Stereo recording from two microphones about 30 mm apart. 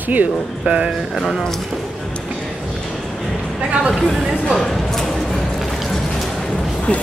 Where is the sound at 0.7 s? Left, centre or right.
Right.